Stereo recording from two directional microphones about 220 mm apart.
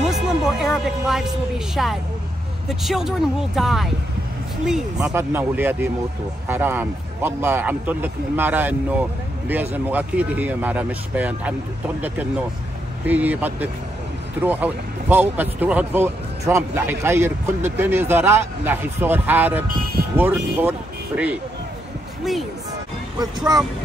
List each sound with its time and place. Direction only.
0.0 s music: centre (ahead or behind)
1.8 s speech: centre (ahead or behind)
23.1 s speech: 15° right (ahead or behind)